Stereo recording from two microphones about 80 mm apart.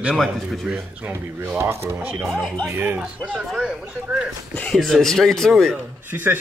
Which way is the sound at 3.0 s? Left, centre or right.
Centre.